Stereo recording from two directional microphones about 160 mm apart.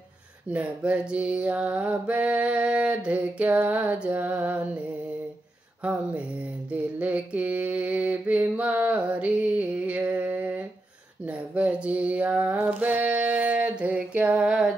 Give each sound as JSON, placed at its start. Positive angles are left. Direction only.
{"t": 0.5, "sound": "mantra", "side_deg": -10}
{"t": 6.7, "sound": "mantra", "side_deg": -10}
{"t": 11.2, "sound": "a sound", "side_deg": -10}